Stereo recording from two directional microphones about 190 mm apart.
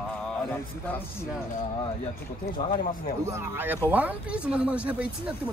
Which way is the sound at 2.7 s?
40° left (ahead or behind).